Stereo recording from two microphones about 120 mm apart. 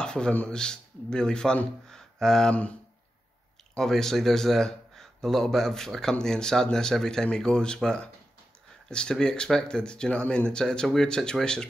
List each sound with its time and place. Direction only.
0.0 s speech: 5° left (ahead or behind)
3.7 s speech: 5° left (ahead or behind)